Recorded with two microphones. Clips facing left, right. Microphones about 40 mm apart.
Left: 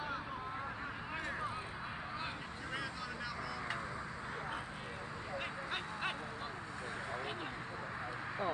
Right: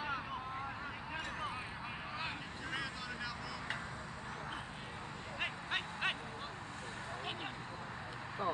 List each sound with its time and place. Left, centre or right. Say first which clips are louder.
5.4 s vehicle: right 5 dB; right